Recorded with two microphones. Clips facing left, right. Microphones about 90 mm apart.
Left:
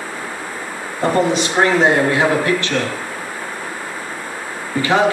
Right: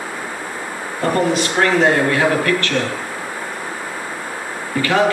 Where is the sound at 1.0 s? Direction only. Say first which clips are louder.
Left 1 dB; 20° left (ahead or behind).